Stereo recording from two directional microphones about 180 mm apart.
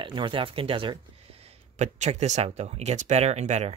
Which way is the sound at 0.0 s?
25° right (ahead or behind).